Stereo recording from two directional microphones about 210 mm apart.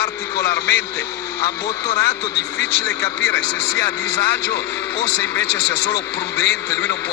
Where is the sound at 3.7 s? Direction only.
50° left (ahead or behind).